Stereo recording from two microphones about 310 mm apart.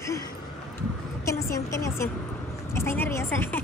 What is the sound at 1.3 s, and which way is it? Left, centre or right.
Speech, centre.